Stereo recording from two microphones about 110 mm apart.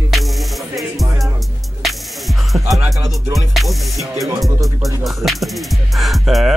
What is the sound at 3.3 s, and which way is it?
Music, centre (ahead or behind).